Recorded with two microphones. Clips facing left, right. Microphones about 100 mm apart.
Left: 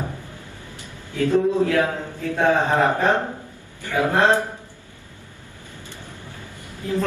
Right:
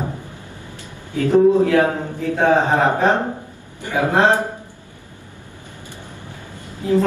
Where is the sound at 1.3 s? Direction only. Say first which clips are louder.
Right 6 dB; 20° right (ahead or behind).